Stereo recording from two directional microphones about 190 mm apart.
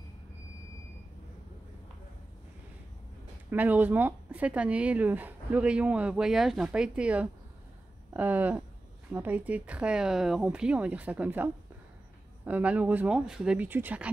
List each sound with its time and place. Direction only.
3.4 s speech: 10° right (ahead or behind)